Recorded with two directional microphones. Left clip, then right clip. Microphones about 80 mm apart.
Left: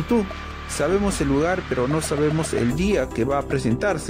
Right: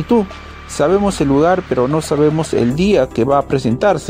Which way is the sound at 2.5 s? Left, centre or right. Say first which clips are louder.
Right 8 dB; right.